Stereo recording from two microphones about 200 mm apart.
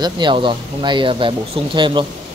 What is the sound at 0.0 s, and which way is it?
Speech, 25° right (ahead or behind).